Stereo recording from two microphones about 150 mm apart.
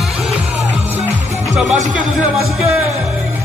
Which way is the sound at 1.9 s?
5° right (ahead or behind).